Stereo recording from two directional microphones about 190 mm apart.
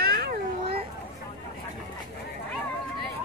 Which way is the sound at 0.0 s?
55° right (ahead or behind).